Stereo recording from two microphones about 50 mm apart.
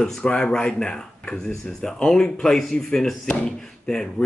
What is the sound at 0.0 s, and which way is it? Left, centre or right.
Speech, centre.